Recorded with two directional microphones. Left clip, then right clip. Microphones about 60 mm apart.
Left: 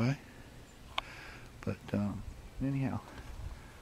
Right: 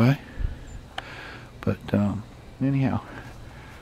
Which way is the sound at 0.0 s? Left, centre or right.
Right.